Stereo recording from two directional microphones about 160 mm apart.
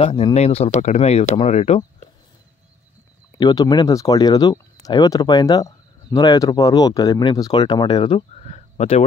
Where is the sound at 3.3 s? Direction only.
25° left (ahead or behind).